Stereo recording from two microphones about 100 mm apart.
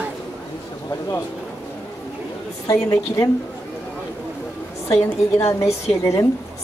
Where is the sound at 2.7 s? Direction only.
35° left (ahead or behind).